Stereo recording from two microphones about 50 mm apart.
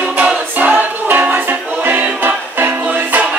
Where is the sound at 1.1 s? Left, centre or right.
Right.